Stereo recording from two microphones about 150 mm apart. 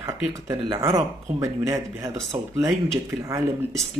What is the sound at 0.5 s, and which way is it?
Speech, 20° right (ahead or behind).